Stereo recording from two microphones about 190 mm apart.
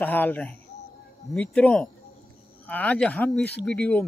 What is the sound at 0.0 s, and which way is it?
Speech, 10° left (ahead or behind).